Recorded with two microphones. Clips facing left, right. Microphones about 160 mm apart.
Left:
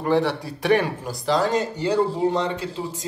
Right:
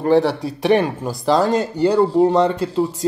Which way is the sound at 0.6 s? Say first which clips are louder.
Right 4 dB; 25° right (ahead or behind).